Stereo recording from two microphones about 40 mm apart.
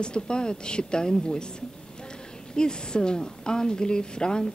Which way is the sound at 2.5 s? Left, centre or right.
Left.